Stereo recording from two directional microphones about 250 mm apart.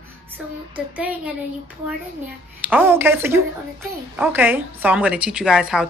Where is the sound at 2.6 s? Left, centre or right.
Centre.